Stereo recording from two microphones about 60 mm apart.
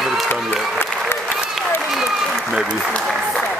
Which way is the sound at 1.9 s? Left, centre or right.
Centre.